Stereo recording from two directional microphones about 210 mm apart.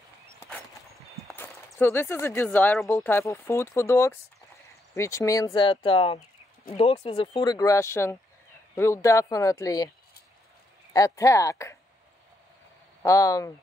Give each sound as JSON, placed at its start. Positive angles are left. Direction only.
{"t": 0.4, "sound": "a sound", "side_deg": 10}
{"t": 1.2, "sound": "speech", "side_deg": 10}
{"t": 10.9, "sound": "speech", "side_deg": 15}
{"t": 13.0, "sound": "speech", "side_deg": 15}